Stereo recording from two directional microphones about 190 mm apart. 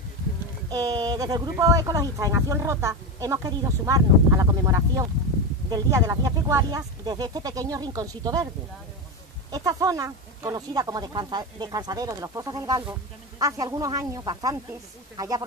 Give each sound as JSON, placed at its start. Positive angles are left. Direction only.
{"t": 0.7, "sound": "speech", "side_deg": -20}
{"t": 9.5, "sound": "speech", "side_deg": -20}